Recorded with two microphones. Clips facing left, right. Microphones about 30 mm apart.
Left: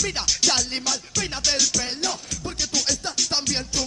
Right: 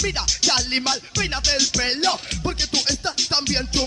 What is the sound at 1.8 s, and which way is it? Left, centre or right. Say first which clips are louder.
Music: right 6 dB; right.